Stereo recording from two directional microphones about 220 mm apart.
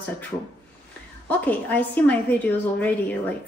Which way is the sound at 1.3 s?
5° left (ahead or behind).